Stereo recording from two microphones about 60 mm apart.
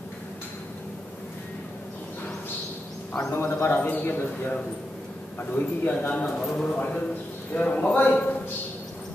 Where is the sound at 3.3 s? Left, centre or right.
Left.